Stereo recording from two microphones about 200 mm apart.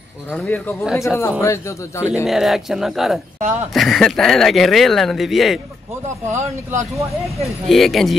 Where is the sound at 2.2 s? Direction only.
Centre (ahead or behind).